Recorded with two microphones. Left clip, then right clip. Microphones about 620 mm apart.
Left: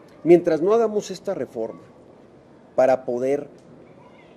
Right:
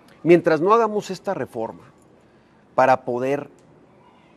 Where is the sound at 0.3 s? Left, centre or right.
Right.